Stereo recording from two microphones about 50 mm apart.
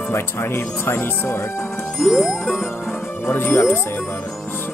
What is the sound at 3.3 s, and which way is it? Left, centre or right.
Speech, left.